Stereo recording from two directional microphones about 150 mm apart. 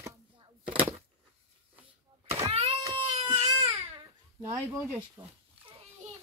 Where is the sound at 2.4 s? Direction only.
40° right (ahead or behind).